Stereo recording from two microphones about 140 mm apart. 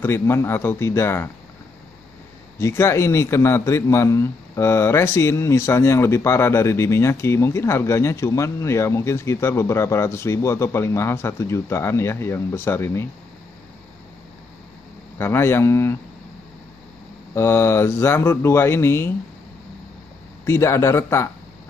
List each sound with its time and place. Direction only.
0.0 s speech: 15° left (ahead or behind)
2.6 s a man's voice: 20° left (ahead or behind)
15.1 s speech: 15° left (ahead or behind)
17.3 s speech: 20° left (ahead or behind)
20.4 s a man's voice: 20° left (ahead or behind)